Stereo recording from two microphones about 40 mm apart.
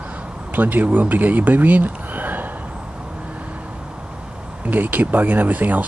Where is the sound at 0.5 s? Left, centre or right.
Right.